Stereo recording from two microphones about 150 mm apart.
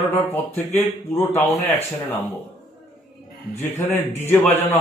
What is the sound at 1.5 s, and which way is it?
Speech, 45° left (ahead or behind).